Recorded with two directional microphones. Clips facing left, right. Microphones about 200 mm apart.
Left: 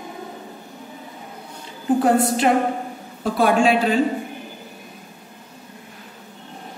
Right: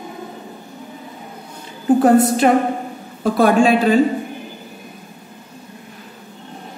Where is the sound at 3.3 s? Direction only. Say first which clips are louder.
Right 3 dB; 45° right (ahead or behind).